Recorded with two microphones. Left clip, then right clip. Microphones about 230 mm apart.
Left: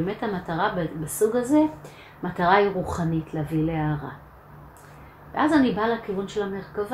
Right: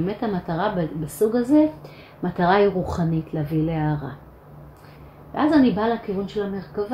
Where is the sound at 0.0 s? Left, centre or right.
Right.